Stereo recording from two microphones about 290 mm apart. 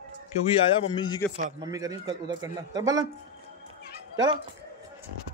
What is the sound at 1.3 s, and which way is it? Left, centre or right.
Speech, centre.